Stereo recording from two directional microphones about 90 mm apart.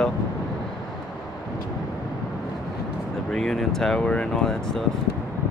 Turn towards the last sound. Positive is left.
turn(degrees=5)  # may be behind; listen again after turning